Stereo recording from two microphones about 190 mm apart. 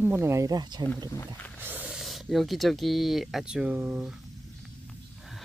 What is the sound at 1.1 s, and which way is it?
Speech, 10° left (ahead or behind).